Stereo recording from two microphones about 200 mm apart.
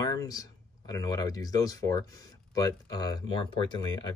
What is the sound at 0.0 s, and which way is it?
Speech, 20° left (ahead or behind).